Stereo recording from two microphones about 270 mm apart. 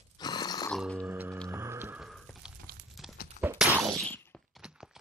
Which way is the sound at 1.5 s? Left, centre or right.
Centre.